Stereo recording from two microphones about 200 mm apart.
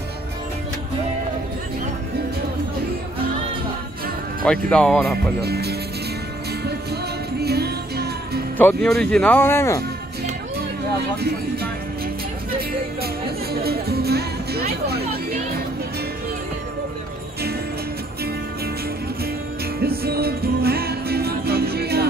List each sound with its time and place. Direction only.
4.5 s speech: 5° left (ahead or behind)
5.4 s speech: 55° right (ahead or behind)
6.6 s music: 55° right (ahead or behind)
8.5 s speech: 5° left (ahead or behind)
11.1 s speech: 50° right (ahead or behind)
12.5 s music: 50° right (ahead or behind)
19.8 s music: 50° right (ahead or behind)